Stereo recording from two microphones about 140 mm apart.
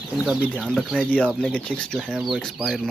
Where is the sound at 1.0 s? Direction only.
10° left (ahead or behind).